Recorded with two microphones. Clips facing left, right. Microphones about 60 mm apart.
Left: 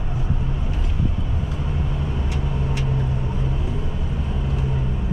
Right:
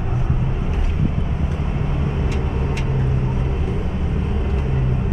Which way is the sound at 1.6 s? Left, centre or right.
Right.